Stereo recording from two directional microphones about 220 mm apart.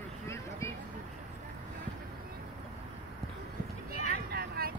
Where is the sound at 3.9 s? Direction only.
45° right (ahead or behind).